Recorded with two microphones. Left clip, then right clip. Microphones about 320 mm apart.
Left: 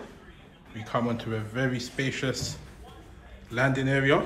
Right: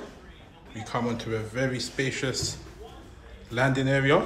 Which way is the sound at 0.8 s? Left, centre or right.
Centre.